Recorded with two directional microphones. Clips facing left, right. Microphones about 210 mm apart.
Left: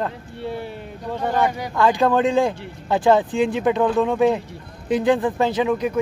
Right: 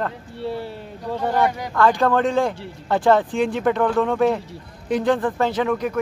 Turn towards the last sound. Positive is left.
turn(degrees=15)  # may be behind; listen again after turning